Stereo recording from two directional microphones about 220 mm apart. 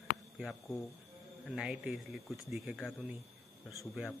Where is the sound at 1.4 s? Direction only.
Centre (ahead or behind).